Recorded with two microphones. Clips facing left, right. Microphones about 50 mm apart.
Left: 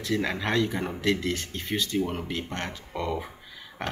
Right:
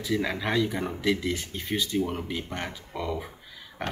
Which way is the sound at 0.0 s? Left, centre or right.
Centre.